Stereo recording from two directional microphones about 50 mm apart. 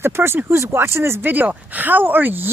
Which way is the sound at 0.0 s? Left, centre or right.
Right.